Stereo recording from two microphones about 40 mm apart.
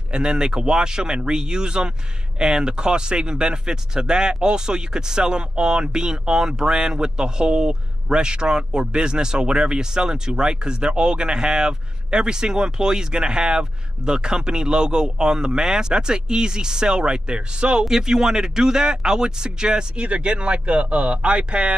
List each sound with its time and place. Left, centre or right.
0.1 s speech: right